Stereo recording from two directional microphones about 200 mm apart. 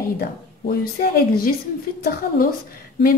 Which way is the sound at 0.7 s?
50° left (ahead or behind).